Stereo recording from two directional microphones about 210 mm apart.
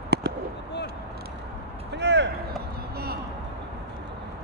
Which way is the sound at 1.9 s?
55° right (ahead or behind).